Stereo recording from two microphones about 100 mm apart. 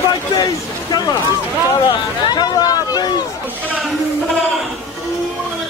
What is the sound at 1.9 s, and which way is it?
Speech, 45° left (ahead or behind).